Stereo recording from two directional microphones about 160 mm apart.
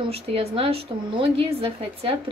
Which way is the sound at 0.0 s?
40° right (ahead or behind).